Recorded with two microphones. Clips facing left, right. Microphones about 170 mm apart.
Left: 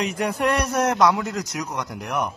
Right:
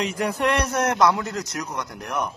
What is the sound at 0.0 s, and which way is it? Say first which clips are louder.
Speech: even; 30° left (ahead or behind).